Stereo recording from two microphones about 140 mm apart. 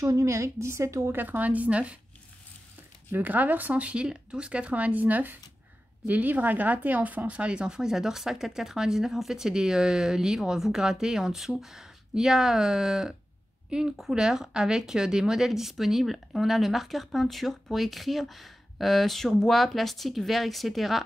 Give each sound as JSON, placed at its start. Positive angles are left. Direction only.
{"t": 0.0, "sound": "a woman's voice", "side_deg": -20}
{"t": 3.1, "sound": "a woman's voice", "side_deg": -10}